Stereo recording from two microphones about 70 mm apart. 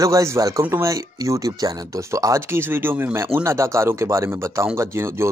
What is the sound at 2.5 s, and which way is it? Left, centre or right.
Speech, right.